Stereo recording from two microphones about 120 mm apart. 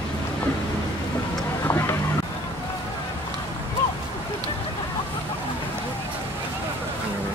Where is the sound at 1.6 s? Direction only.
20° left (ahead or behind).